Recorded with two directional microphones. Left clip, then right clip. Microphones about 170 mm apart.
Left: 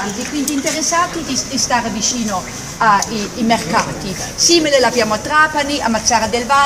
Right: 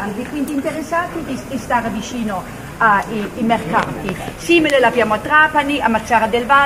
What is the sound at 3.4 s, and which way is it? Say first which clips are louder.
A woman's voice: left 1 dB; 5° left (ahead or behind).